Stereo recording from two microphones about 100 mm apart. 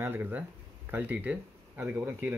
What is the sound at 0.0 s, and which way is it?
Speech, 20° right (ahead or behind).